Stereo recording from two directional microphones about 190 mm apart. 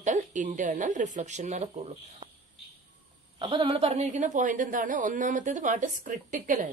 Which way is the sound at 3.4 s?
25° right (ahead or behind).